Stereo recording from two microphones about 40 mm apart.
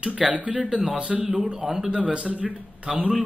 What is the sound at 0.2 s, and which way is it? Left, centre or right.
Speech, centre.